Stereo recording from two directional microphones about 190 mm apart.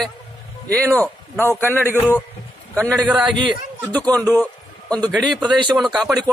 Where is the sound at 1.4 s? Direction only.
10° left (ahead or behind).